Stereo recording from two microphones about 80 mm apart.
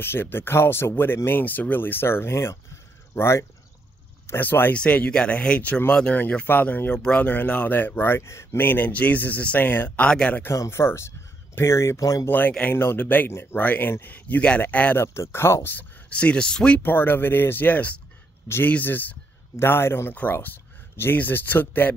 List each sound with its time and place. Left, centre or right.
0.0 s speech: left
4.8 s speech: centre; by 8.5 s left
8.5 s speech: left
10.5 s speech: left
12.3 s speech: left
15.0 s speech: left; by 16.8 s centre
16.8 s speech: left